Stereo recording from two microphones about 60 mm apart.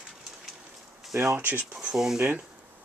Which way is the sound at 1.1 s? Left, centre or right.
Right.